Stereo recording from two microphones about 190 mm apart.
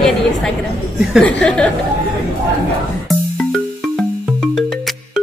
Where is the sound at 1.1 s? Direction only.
5° left (ahead or behind).